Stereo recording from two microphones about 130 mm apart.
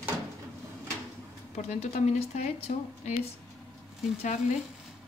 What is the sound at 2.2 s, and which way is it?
Speech, 55° left (ahead or behind).